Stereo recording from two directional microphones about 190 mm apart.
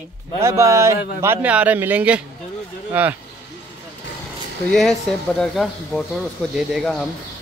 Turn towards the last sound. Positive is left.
turn(degrees=0)  # may be behind; listen again after turning